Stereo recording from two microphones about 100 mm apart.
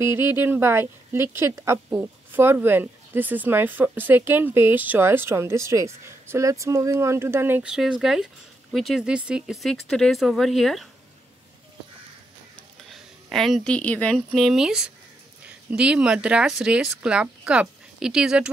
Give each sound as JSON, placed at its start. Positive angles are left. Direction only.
{"t": 0.0, "sound": "a woman's voice", "side_deg": -25}
{"t": 7.6, "sound": "speech", "side_deg": -5}
{"t": 12.9, "sound": "a sound", "side_deg": 0}
{"t": 13.7, "sound": "speech", "side_deg": 15}
{"t": 14.1, "sound": "speech", "side_deg": 0}